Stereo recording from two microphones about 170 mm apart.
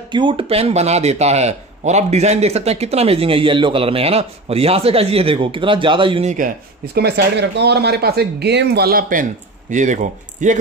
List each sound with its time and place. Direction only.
0.1 s speech: 30° right (ahead or behind)
6.2 s speech: 50° right (ahead or behind)
7.0 s speech: 75° right (ahead or behind); by 10.6 s 45° right (ahead or behind)